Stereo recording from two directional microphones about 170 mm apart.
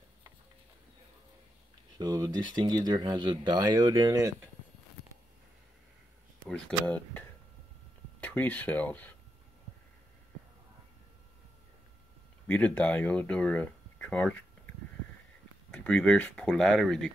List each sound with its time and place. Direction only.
2.0 s speech: 25° right (ahead or behind)
6.4 s speech: 5° left (ahead or behind)
12.4 s speech: 10° left (ahead or behind)
15.7 s speech: 5° left (ahead or behind)